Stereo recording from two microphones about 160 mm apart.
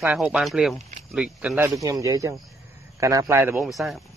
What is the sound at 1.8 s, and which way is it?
Speech, 20° right (ahead or behind).